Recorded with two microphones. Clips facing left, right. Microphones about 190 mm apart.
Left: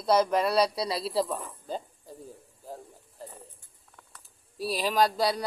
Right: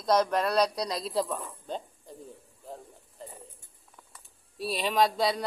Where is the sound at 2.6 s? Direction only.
Centre (ahead or behind).